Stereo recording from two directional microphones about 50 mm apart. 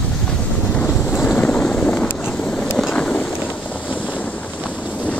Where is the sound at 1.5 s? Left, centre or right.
Centre.